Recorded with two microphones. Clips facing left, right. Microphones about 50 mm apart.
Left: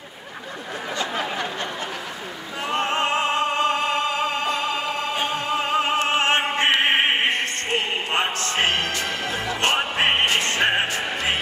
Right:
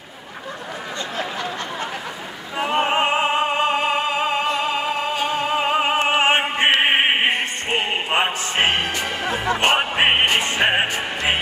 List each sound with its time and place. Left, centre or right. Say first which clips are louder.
2.6 s opera: right 4 dB; centre
5.4 s opera: right 3 dB; centre
9.6 s music: right 2 dB; right